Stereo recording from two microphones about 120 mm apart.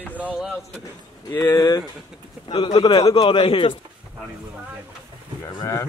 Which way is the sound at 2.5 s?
40° left (ahead or behind).